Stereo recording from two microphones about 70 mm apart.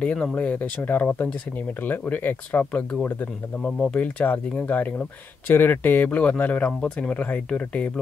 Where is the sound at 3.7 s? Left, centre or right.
Centre.